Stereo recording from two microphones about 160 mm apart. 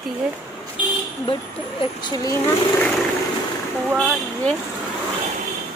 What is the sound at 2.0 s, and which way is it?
Speech, 25° left (ahead or behind).